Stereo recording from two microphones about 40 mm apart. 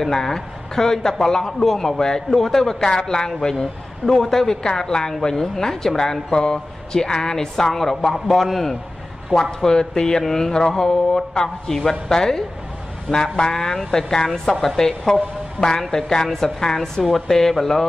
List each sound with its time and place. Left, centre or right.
0.0 s a man's voice: centre
9.6 s a man's voice: centre